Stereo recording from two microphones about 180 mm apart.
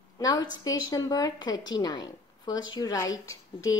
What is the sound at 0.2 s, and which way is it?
A woman's voice, 20° left (ahead or behind).